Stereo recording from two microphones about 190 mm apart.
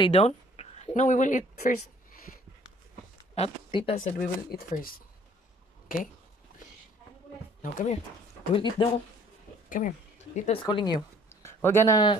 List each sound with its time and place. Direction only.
0.0 s speech: 35° left (ahead or behind)
3.3 s speech: 30° left (ahead or behind)
4.0 s speech: 45° left (ahead or behind)
7.6 s speech: 35° left (ahead or behind)
8.5 s speech: 25° left (ahead or behind)
9.7 s speech: 45° left (ahead or behind); by 11.0 s 25° left (ahead or behind)
11.0 s speech: 15° left (ahead or behind)